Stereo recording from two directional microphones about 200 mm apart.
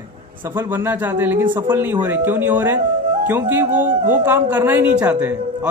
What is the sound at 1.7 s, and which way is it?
A man's voice, 10° right (ahead or behind).